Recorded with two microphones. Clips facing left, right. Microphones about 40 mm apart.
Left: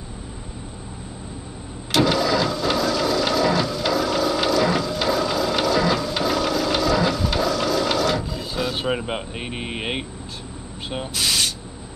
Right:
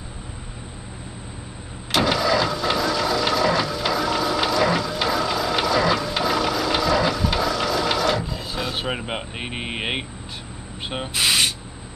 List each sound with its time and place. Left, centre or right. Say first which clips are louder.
1.9 s vehicle: left 1 dB; centre
10.9 s speech: right 2 dB; right